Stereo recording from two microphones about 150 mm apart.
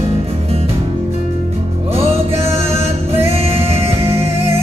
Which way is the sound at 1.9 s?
40° right (ahead or behind).